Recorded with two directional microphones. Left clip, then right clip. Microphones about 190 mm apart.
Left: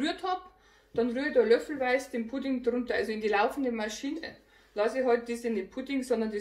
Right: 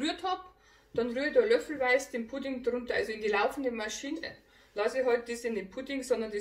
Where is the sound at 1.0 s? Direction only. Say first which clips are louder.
Left 1 dB; 30° left (ahead or behind).